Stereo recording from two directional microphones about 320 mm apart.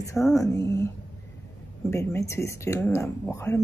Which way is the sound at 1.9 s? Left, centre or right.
Centre.